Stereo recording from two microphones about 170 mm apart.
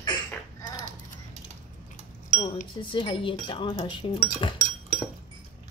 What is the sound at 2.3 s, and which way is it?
Speech, 45° left (ahead or behind).